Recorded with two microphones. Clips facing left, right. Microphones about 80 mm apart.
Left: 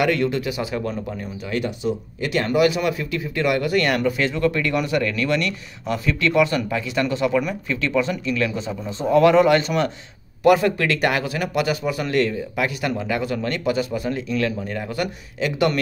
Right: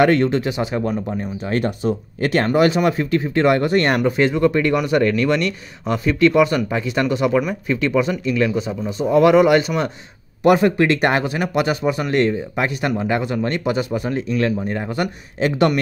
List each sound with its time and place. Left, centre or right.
0.0 s speech: right
1.5 s speech: right; by 9.8 s centre
10.4 s speech: right